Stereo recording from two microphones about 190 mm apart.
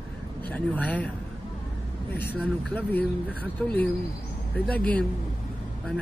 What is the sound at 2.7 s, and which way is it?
Speech, 10° left (ahead or behind).